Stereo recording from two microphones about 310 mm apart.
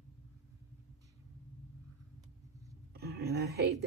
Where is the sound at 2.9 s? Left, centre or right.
Right.